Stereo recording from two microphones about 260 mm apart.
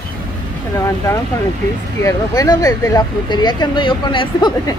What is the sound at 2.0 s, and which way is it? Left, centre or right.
Speech, centre.